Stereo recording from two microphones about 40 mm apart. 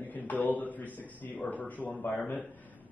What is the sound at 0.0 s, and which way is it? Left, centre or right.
A man's voice, left.